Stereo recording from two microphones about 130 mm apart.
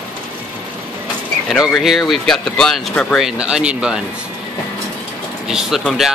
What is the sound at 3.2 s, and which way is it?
Speech, 5° right (ahead or behind).